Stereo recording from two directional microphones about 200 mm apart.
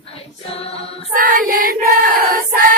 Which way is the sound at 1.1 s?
45° right (ahead or behind).